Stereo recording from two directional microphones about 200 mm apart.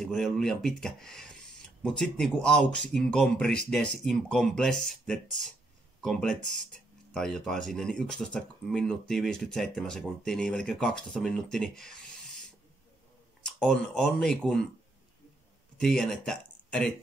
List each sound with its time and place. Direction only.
0.0 s speech: centre (ahead or behind)
13.6 s speech: centre (ahead or behind)
15.8 s speech: centre (ahead or behind)